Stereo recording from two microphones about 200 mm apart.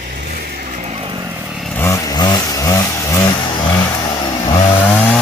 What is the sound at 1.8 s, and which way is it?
Vehicle, 15° left (ahead or behind).